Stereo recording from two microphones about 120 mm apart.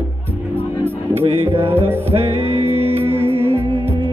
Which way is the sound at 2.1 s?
55° right (ahead or behind).